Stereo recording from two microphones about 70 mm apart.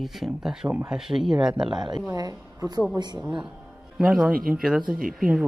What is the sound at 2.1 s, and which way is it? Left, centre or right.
Speech, right.